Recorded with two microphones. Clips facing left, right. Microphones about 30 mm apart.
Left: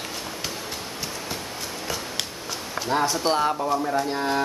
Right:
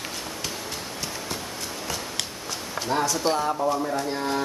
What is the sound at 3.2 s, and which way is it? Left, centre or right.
Speech, left.